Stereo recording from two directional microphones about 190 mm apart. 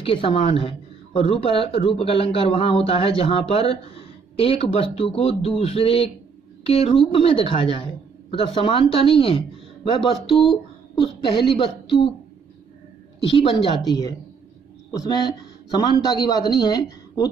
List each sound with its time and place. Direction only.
0.0 s speech: 30° left (ahead or behind)
11.0 s speech: 25° left (ahead or behind)
13.3 s speech: 30° left (ahead or behind)